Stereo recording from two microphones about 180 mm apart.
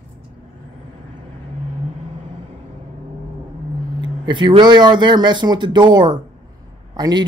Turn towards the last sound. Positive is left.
turn(degrees=-20)  # may be behind; listen again after turning